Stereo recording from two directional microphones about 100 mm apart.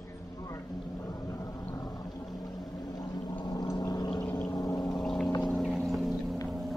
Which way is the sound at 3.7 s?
40° left (ahead or behind).